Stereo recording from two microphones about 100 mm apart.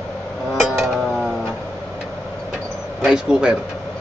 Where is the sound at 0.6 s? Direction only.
Centre (ahead or behind).